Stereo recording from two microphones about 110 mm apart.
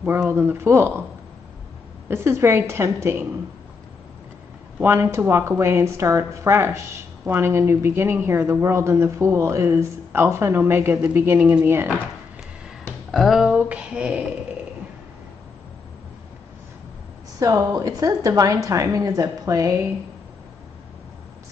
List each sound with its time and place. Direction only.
0.0 s a woman's voice: 20° right (ahead or behind)
2.0 s a woman's voice: 20° right (ahead or behind)
4.7 s a woman's voice: 20° right (ahead or behind)
13.1 s speech: centre (ahead or behind)
13.6 s a sound: 10° right (ahead or behind)
17.4 s a woman's voice: 35° right (ahead or behind)